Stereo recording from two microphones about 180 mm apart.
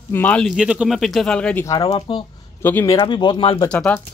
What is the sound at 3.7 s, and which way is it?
Speech, 5° left (ahead or behind).